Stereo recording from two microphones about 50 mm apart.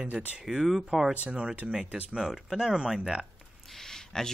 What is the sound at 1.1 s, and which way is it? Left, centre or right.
Speech, right.